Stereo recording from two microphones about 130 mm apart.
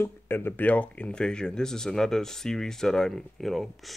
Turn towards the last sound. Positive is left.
turn(degrees=0)  # may be behind; listen again after turning